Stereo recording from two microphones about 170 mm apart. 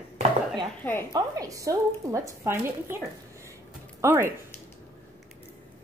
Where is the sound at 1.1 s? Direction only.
20° right (ahead or behind).